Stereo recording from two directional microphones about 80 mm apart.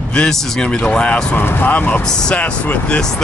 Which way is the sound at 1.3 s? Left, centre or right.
Left.